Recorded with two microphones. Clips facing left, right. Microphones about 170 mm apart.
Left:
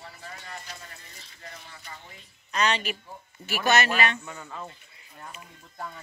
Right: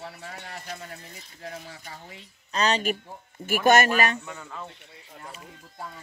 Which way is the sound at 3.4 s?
50° right (ahead or behind).